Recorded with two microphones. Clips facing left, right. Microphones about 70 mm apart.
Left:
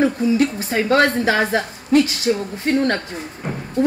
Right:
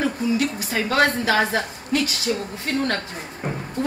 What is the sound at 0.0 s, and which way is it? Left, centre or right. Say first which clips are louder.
Speech: left 5 dB; left.